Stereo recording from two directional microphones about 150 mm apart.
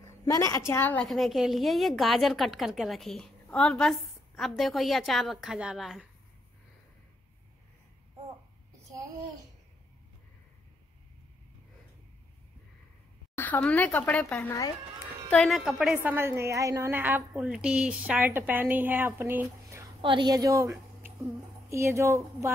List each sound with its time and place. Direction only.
0.0 s a woman's voice: 20° left (ahead or behind)
1.0 s a woman's voice: centre (ahead or behind)
13.4 s a woman's voice: 10° left (ahead or behind); by 19.9 s 15° right (ahead or behind)
20.0 s a woman's voice: 30° right (ahead or behind)